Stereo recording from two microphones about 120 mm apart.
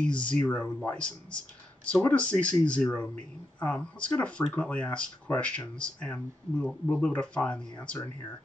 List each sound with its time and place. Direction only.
0.0 s speech: 10° left (ahead or behind)